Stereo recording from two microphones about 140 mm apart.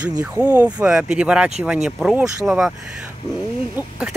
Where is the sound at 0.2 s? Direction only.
10° right (ahead or behind).